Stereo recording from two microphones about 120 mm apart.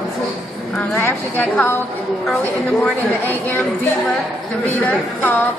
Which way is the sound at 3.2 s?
15° left (ahead or behind).